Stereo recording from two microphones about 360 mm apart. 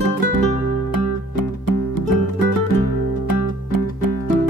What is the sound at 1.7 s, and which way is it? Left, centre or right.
Music, left.